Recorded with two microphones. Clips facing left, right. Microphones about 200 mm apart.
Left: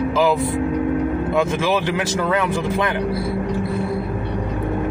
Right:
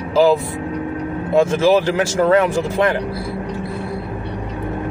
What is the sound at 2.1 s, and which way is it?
Speech, 35° right (ahead or behind).